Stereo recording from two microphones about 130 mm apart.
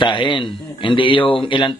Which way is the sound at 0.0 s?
35° left (ahead or behind).